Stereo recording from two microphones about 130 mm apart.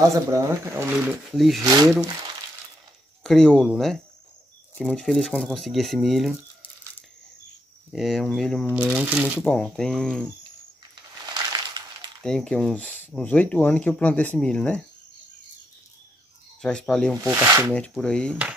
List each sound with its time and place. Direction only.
0.3 s speech: 20° right (ahead or behind)
1.3 s speech: centre (ahead or behind)
1.6 s speech: 30° right (ahead or behind)
3.3 s speech: 5° left (ahead or behind)
7.9 s speech: centre (ahead or behind)
8.7 s speech: 10° right (ahead or behind)
9.5 s speech: 5° left (ahead or behind)
11.2 s crushing: 30° right (ahead or behind)
12.2 s speech: 5° left (ahead or behind)
16.6 s speech: 5° left (ahead or behind)
17.2 s speech: 20° right (ahead or behind)
17.9 s speech: 5° left (ahead or behind)